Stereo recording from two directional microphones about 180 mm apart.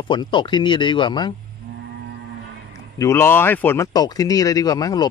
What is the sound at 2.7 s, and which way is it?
Speech, 15° left (ahead or behind).